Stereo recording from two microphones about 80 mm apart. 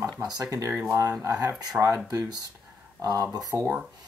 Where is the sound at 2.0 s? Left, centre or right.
Right.